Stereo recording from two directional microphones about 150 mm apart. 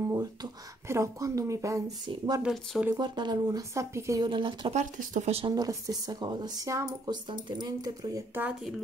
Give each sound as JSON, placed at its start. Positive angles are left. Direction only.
{"t": 0.0, "sound": "speech", "side_deg": -20}
{"t": 2.4, "sound": "speech", "side_deg": 0}
{"t": 3.0, "sound": "speech", "side_deg": -30}
{"t": 4.2, "sound": "speech", "side_deg": -35}
{"t": 4.7, "sound": "speech", "side_deg": -50}
{"t": 5.5, "sound": "speech", "side_deg": -25}
{"t": 8.4, "sound": "speech", "side_deg": -10}